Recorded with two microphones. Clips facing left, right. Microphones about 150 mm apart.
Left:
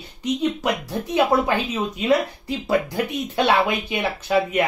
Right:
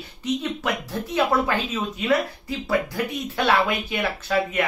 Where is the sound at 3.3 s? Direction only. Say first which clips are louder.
Left 2 dB; 20° left (ahead or behind).